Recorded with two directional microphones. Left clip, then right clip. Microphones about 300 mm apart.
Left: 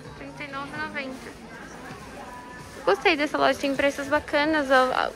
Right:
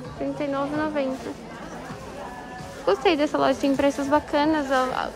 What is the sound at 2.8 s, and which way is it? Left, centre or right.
Speech, centre.